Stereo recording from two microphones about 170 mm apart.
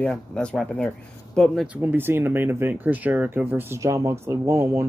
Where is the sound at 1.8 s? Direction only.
15° right (ahead or behind).